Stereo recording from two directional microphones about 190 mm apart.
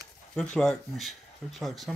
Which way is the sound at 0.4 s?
5° left (ahead or behind).